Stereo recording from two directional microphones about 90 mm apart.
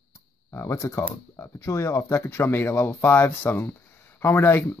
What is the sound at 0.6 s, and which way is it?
Speech, 35° left (ahead or behind).